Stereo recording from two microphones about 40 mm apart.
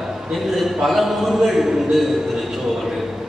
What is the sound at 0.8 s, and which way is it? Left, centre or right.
Speech, centre.